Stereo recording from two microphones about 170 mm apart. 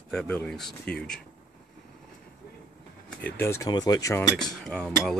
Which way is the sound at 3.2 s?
15° left (ahead or behind).